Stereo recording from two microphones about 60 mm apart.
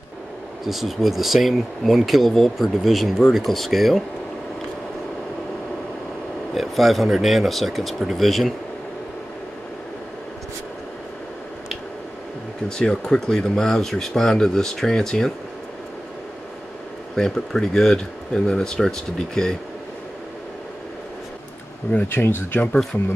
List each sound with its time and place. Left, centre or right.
0.7 s speech: centre
6.5 s speech: centre
12.6 s speech: centre
17.1 s speech: centre
22.0 s speech: left